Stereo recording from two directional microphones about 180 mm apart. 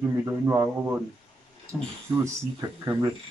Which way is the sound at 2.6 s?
20° right (ahead or behind).